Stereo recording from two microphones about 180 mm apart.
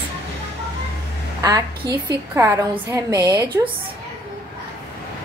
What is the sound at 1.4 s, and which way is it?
A woman's voice, 20° right (ahead or behind).